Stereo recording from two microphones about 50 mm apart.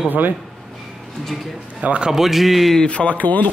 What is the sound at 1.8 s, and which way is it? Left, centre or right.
Speech, right.